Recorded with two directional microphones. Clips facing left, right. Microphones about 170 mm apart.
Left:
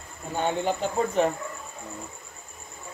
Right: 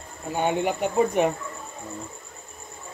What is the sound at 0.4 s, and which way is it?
Speech, 15° right (ahead or behind).